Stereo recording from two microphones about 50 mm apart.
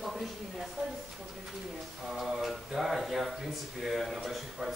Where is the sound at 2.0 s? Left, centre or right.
Centre.